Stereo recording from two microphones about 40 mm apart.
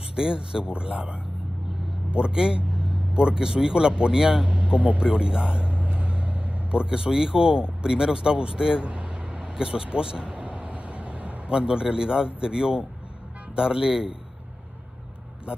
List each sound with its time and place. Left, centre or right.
0.1 s speech: centre
4.5 s speech: right
4.9 s vehicle: right
6.7 s speech: right
8.8 s vehicle: right
11.5 s speech: centre